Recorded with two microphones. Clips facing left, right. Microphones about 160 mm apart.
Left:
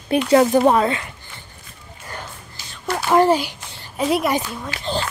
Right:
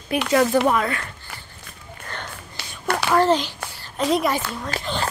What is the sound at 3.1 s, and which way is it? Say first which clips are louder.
A woman's voice: left 3 dB; 10° left (ahead or behind).